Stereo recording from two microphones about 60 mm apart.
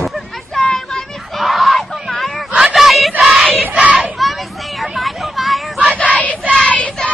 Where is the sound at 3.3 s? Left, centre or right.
Centre.